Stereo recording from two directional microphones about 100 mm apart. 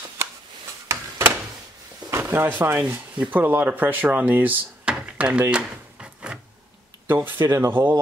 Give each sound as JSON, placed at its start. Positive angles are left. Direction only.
{"t": 0.8, "sound": "a sound", "side_deg": -30}
{"t": 2.0, "sound": "drawer open or close", "side_deg": -25}
{"t": 3.2, "sound": "speech", "side_deg": -20}
{"t": 7.1, "sound": "speech", "side_deg": -20}